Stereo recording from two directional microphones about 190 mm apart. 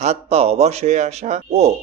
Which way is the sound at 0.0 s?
35° right (ahead or behind).